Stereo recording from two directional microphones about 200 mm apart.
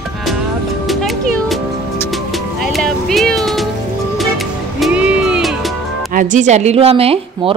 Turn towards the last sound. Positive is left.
turn(degrees=-30)  # may be behind; listen again after turning